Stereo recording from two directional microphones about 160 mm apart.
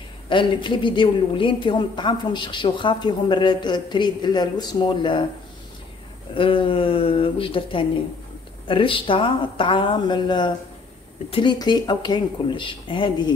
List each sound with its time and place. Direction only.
0.3 s a woman's voice: 30° left (ahead or behind)
6.3 s a woman's voice: 35° left (ahead or behind)